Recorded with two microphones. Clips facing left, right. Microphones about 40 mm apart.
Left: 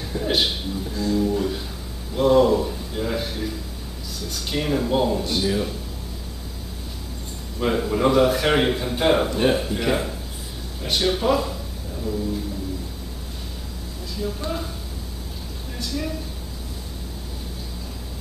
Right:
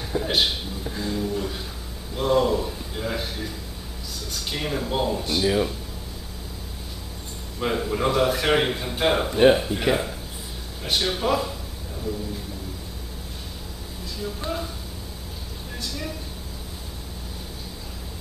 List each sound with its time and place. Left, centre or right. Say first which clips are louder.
0.2 s a man's voice: left 2 dB; centre
0.8 s a sound: left 5 dB; centre
1.2 s a sound: left 5 dB; centre
4.3 s a man's voice: left 4 dB; centre
7.6 s a man's voice: left 3 dB; centre
9.3 s a man's voice: right 3 dB; centre
14.1 s a man's voice: left 2 dB; centre
15.8 s a man's voice: left 5 dB; centre